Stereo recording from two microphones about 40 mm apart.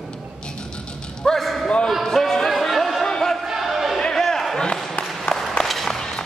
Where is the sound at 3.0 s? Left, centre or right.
Centre.